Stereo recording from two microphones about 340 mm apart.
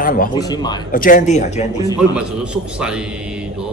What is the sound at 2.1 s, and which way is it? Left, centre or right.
Speech, centre.